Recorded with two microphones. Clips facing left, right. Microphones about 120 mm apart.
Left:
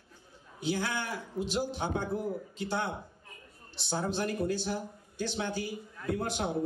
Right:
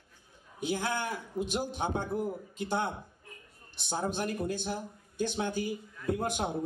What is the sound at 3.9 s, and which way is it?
A man's voice, 20° right (ahead or behind).